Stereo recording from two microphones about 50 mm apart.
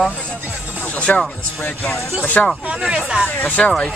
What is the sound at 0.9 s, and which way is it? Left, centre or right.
Music, left.